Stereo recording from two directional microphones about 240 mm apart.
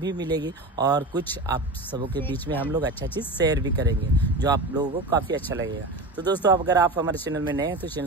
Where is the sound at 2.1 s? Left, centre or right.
Centre.